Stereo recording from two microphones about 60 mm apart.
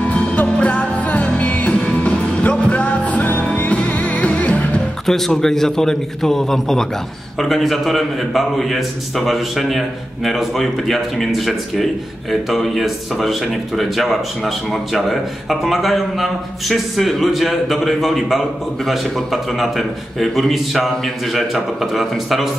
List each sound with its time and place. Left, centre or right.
0.1 s music: left
5.0 s a man's voice: centre